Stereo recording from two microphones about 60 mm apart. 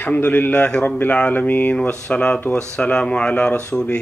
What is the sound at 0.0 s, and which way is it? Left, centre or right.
Speech, left.